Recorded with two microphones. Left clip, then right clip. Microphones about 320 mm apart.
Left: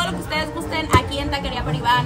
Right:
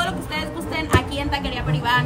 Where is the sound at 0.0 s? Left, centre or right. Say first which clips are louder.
Left 2 dB; centre.